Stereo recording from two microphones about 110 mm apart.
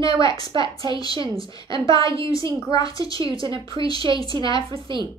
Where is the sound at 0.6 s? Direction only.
35° left (ahead or behind).